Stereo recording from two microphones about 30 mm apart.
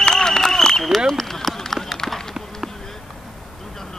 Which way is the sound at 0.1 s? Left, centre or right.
Centre.